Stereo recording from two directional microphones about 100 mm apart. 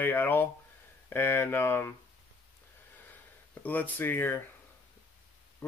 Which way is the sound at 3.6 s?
15° left (ahead or behind).